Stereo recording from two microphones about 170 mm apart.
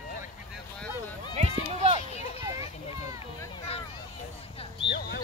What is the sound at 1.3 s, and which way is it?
Run, 40° right (ahead or behind).